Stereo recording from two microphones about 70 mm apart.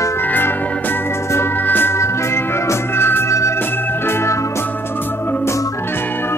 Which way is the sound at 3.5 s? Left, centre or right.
Left.